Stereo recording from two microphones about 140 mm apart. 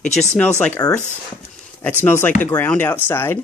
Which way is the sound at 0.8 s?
25° left (ahead or behind).